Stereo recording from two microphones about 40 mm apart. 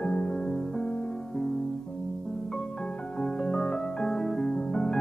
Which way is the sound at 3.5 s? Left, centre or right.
Centre.